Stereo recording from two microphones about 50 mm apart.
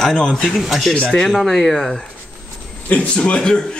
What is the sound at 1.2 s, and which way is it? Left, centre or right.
Speech, centre.